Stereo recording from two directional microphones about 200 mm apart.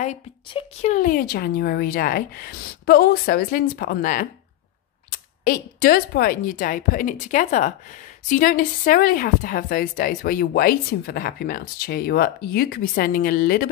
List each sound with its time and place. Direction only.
0.0 s speech: 30° left (ahead or behind)
0.9 s a woman's voice: 45° left (ahead or behind)
5.4 s a woman's voice: 45° left (ahead or behind)